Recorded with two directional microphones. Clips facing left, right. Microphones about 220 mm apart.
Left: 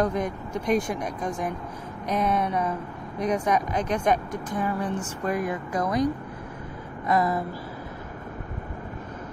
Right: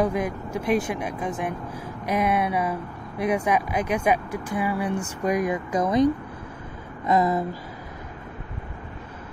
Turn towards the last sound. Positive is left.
turn(degrees=-20)  # may be behind; listen again after turning